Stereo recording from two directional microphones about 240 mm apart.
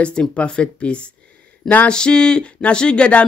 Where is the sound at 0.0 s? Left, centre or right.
Centre.